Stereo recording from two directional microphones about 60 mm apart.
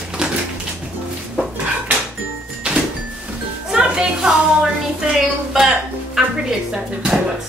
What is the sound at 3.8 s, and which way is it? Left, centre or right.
A woman's voice, centre.